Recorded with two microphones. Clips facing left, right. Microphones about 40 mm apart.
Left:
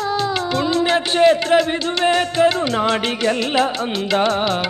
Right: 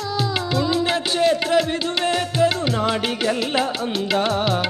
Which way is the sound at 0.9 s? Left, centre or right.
Left.